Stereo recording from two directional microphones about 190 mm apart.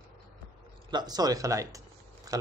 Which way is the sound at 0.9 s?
20° right (ahead or behind).